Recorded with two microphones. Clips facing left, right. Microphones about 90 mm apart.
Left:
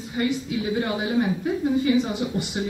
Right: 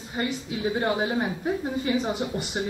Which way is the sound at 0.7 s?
35° right (ahead or behind).